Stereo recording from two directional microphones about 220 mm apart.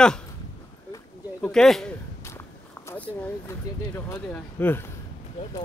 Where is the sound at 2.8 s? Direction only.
5° left (ahead or behind).